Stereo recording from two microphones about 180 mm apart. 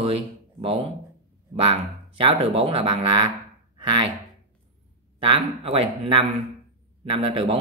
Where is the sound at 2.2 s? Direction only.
30° right (ahead or behind).